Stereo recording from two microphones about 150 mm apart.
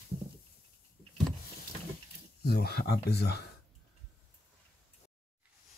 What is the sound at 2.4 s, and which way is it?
Speech, 90° left.